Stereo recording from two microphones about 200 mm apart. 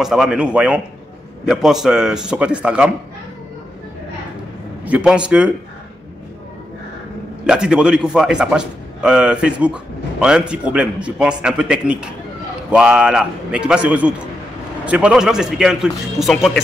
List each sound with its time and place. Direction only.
0.0 s a man's voice: 5° right (ahead or behind)
4.8 s a man's voice: 5° right (ahead or behind)
7.4 s a man's voice: 5° right (ahead or behind)